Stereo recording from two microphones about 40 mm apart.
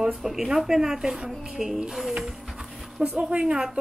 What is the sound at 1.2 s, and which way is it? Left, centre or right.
Speech, right.